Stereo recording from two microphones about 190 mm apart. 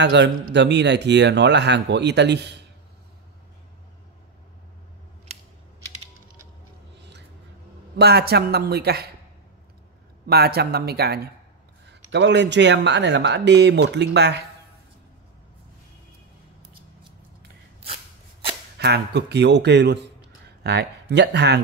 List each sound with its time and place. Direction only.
0.0 s speech: 65° right (ahead or behind)
5.3 s scissors: 35° right (ahead or behind)
7.0 s a sound: 65° right (ahead or behind)
7.9 s speech: 60° right (ahead or behind)
10.2 s speech: 55° right (ahead or behind)
18.8 s speech: 60° right (ahead or behind)